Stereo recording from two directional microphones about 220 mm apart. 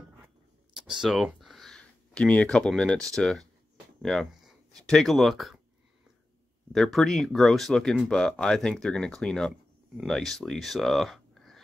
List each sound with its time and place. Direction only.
0.7 s a sound: centre (ahead or behind)
3.2 s speech: centre (ahead or behind)
6.7 s speech: centre (ahead or behind)